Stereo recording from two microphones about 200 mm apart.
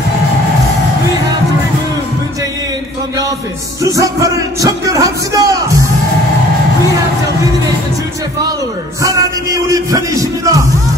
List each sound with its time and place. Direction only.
3.8 s a man's voice: 15° right (ahead or behind)
9.0 s music: 15° right (ahead or behind)